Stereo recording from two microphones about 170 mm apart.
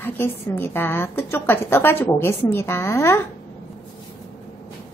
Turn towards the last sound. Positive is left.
turn(degrees=15)  # may be behind; listen again after turning